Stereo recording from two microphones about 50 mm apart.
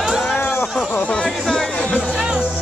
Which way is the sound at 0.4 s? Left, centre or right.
Left.